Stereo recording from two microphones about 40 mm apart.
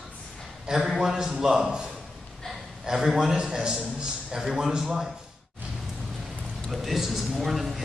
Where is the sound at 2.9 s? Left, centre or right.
Centre.